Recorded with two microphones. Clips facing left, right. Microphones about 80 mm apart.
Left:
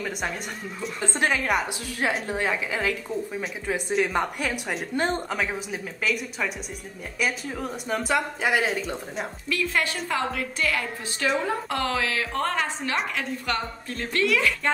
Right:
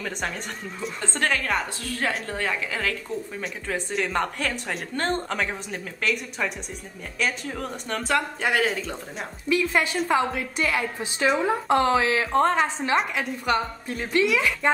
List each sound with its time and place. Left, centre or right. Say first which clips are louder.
1.0 s speech: left 1 dB; centre
9.5 s a woman's voice: right 4 dB; centre